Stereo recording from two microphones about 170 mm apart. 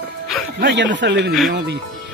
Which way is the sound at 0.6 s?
90° right.